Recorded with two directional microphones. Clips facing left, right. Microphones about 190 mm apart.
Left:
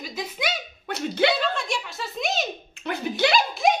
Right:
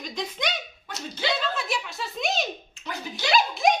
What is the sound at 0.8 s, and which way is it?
Speech, 60° left (ahead or behind).